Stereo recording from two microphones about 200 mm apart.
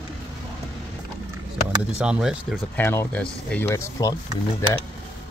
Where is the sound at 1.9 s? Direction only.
5° right (ahead or behind).